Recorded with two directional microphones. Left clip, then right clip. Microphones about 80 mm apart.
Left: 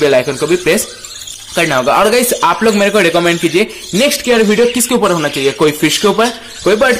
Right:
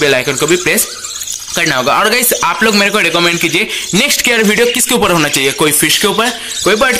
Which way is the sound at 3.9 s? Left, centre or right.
Centre.